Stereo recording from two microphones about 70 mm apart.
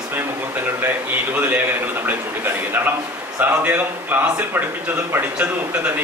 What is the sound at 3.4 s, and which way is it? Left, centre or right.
Speech, right.